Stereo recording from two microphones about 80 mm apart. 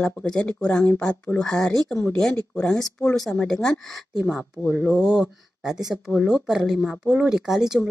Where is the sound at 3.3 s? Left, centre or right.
Centre.